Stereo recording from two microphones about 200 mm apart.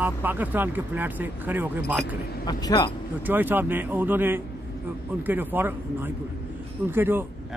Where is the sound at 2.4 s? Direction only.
20° left (ahead or behind).